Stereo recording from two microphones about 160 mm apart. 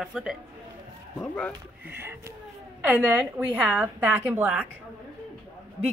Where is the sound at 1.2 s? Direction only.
5° left (ahead or behind).